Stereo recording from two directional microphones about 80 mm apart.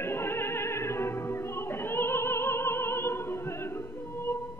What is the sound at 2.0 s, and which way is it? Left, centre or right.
Opera, left.